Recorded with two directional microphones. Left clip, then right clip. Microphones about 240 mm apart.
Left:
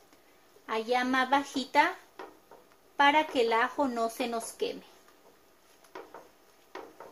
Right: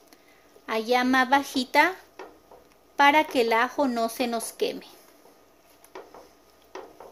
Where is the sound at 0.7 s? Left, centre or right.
Right.